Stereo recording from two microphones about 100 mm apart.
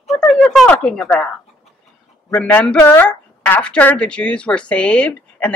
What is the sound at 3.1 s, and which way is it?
Speech, 15° left (ahead or behind).